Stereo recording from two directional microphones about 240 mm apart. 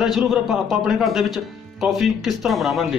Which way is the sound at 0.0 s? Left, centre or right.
Centre.